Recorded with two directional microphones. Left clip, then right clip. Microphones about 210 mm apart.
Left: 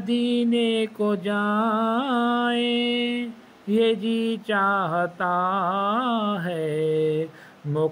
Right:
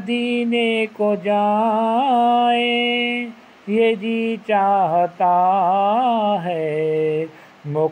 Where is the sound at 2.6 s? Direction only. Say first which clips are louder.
Right 5 dB; 50° left (ahead or behind).